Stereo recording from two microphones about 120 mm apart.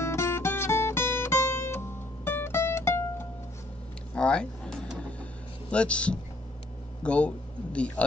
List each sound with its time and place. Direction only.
0.0 s music: 20° left (ahead or behind)
4.1 s a sound: 10° left (ahead or behind)
5.7 s a man's voice: 10° left (ahead or behind)